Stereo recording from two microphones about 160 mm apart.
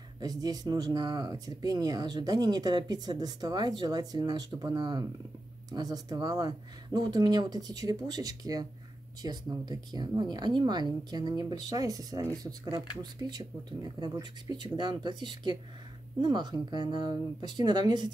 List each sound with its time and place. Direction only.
0.2 s speech: 25° right (ahead or behind)